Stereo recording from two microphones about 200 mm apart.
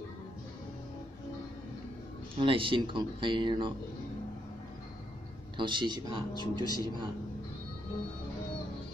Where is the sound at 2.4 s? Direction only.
25° right (ahead or behind).